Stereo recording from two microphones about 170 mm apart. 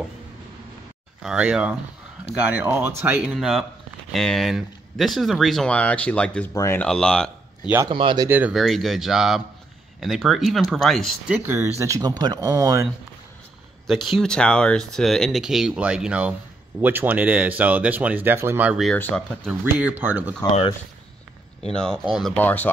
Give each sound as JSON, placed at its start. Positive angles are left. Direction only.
{"t": 1.2, "sound": "speech", "side_deg": -5}
{"t": 3.3, "sound": "speech", "side_deg": 0}
{"t": 7.6, "sound": "speech", "side_deg": -15}
{"t": 7.9, "sound": "speech", "side_deg": -30}
{"t": 8.3, "sound": "speech", "side_deg": -10}
{"t": 11.3, "sound": "speech", "side_deg": -15}
{"t": 13.8, "sound": "speech", "side_deg": 0}
{"t": 18.9, "sound": "speech", "side_deg": 5}
{"t": 19.6, "sound": "speech", "side_deg": -10}
{"t": 21.7, "sound": "speech", "side_deg": 5}